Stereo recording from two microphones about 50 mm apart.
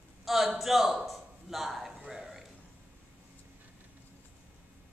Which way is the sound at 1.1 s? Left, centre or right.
Centre.